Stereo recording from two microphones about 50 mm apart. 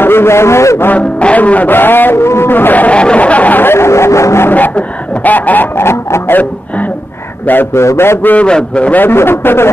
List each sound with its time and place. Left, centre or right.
0.0 s a man's voice: left
0.9 s music: left
2.2 s speech: left
2.5 s music: left
3.0 s a sound: left
3.6 s speech: left
4.5 s music: left
5.8 s speech: left
7.7 s speech: left
8.2 s music: left
8.5 s a sound: left
8.9 s a man's voice: left